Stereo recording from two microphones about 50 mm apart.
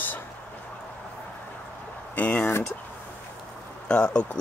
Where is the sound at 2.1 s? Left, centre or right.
Left.